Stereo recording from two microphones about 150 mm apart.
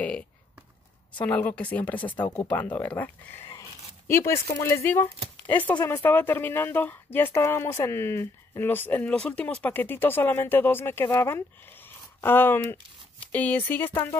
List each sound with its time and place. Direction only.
1.2 s speech: 10° left (ahead or behind)